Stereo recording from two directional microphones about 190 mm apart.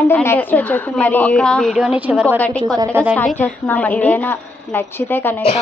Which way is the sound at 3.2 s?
10° left (ahead or behind).